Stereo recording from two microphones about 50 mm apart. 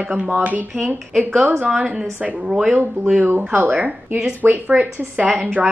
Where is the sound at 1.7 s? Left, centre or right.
Right.